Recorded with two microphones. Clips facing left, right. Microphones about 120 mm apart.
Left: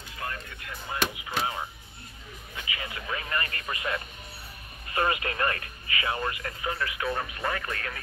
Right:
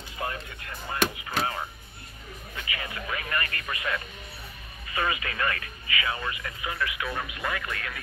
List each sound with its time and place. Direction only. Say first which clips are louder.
1.1 s a sound: right 1 dB; 15° left (ahead or behind)
2.5 s music: right 1 dB; 20° left (ahead or behind)
4.8 s speech: left 2 dB; 40° left (ahead or behind)